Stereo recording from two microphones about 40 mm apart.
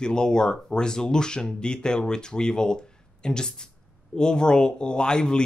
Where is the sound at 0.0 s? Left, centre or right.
Centre.